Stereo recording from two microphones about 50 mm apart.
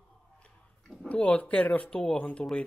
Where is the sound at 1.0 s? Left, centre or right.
Left.